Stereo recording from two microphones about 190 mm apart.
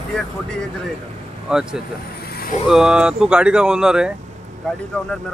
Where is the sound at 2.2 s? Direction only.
55° left (ahead or behind).